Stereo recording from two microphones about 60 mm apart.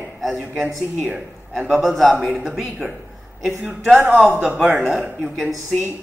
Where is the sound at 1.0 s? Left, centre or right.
Right.